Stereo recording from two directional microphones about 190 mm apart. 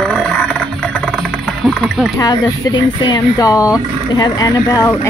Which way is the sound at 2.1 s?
20° left (ahead or behind).